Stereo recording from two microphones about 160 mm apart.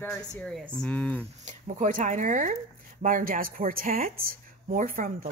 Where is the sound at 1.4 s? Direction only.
50° right (ahead or behind).